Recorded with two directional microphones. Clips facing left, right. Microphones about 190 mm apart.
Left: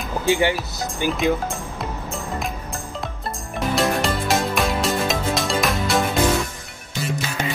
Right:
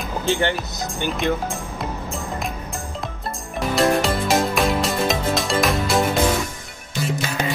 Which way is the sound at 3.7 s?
Centre (ahead or behind).